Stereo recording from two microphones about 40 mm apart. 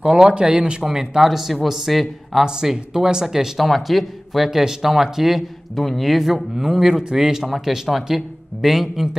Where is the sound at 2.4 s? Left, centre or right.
Centre.